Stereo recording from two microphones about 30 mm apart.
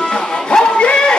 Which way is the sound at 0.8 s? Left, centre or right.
Left.